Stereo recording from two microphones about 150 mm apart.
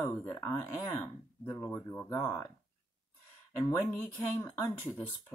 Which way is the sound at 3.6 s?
15° left (ahead or behind).